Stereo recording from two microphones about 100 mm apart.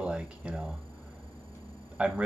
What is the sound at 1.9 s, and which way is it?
Speech, 10° right (ahead or behind).